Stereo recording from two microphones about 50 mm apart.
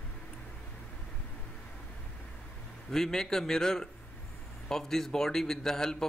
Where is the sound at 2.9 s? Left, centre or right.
Centre.